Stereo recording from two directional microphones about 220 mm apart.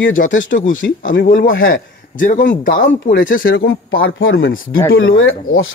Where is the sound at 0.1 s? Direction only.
35° left (ahead or behind).